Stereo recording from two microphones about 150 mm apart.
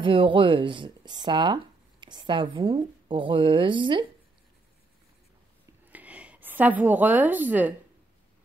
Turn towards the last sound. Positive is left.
turn(degrees=-10)  # may be behind; listen again after turning